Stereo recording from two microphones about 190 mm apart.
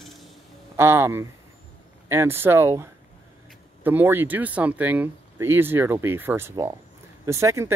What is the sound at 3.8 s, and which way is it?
Speech, 10° right (ahead or behind).